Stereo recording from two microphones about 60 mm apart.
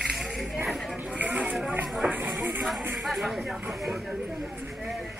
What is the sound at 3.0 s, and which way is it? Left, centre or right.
Speech, centre.